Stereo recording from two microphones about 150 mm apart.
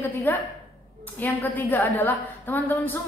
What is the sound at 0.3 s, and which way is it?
A woman's voice, 15° left (ahead or behind).